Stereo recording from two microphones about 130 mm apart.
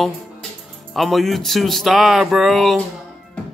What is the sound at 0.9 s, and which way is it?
Speech, centre (ahead or behind).